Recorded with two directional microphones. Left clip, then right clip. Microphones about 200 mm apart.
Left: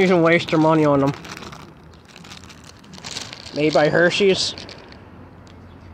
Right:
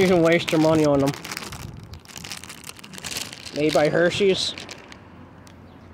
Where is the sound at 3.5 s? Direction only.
10° right (ahead or behind).